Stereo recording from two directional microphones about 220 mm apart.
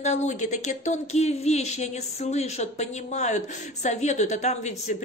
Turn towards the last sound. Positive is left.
turn(degrees=30)  # may be behind; listen again after turning